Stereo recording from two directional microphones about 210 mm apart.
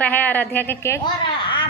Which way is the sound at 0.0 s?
10° left (ahead or behind).